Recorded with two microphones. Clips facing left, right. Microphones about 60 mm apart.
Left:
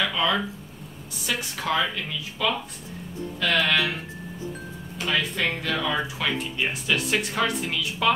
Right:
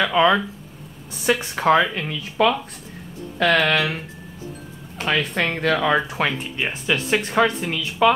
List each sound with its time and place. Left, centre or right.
0.0 s speech: right
4.9 s speech: right
6.6 s speech: right